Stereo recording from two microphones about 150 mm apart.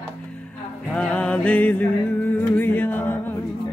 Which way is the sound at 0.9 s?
5° left (ahead or behind).